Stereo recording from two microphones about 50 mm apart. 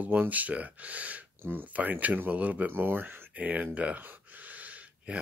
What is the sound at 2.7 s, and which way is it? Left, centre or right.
Speech, right.